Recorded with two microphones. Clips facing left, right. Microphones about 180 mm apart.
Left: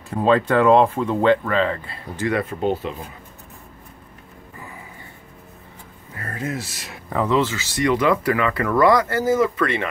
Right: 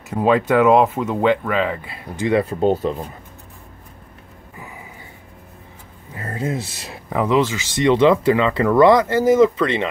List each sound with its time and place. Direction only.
0.1 s speech: 10° right (ahead or behind)
2.3 s speech: 35° right (ahead or behind)
6.1 s speech: 25° right (ahead or behind)
7.1 s speech: 15° right (ahead or behind)